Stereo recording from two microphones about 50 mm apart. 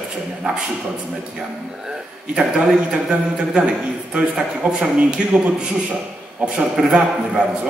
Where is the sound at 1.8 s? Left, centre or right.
Centre.